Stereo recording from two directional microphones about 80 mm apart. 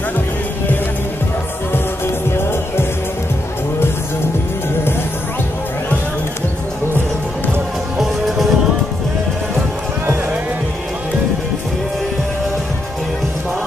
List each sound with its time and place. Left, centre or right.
1.7 s music: left
8.0 s music: centre